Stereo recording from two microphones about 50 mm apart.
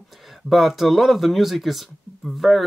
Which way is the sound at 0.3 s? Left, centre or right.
Centre.